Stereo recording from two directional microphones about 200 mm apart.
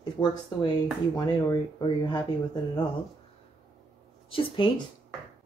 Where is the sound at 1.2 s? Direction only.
20° left (ahead or behind).